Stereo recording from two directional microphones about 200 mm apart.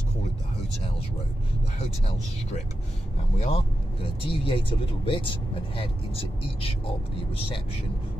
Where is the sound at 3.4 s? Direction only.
30° left (ahead or behind).